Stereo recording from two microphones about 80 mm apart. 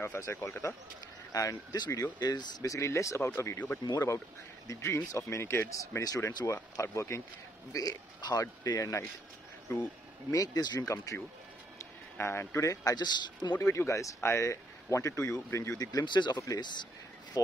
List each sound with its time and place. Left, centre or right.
0.0 s speech: left
1.3 s speech: left
2.7 s speech: left
7.7 s speech: left
10.3 s speech: left
12.2 s speech: left
12.9 s speech: left
13.6 s speech: left
15.8 s speech: left